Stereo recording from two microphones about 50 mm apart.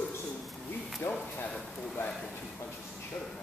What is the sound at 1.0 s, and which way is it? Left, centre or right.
Speech, left.